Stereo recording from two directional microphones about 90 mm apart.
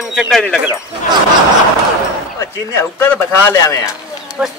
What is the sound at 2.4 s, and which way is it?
A man's voice, 25° left (ahead or behind).